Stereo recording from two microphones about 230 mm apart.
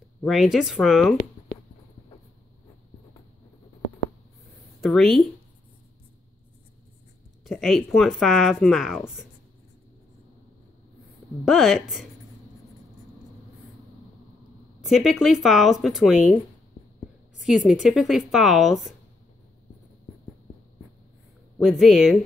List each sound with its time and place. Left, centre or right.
0.2 s speech: centre
4.8 s speech: centre
7.4 s speech: centre
11.4 s speech: centre
14.8 s speech: centre
17.5 s speech: centre
21.5 s speech: centre